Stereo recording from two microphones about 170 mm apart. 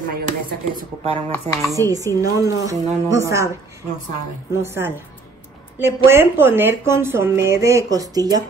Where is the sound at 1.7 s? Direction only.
20° right (ahead or behind).